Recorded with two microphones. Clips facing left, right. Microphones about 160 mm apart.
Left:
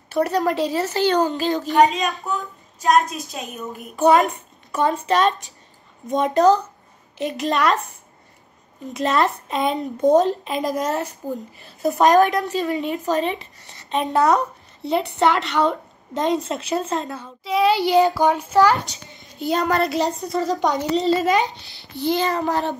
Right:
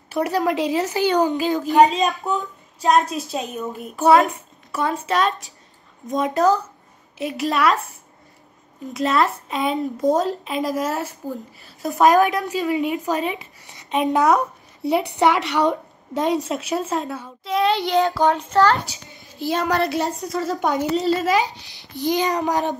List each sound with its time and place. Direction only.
0.1 s a woman's voice: 10° right (ahead or behind)
3.1 s a woman's voice: 30° right (ahead or behind)
3.9 s a woman's voice: centre (ahead or behind)
8.8 s a woman's voice: centre (ahead or behind)
18.9 s a woman's voice: centre (ahead or behind)
21.9 s a woman's voice: 15° right (ahead or behind)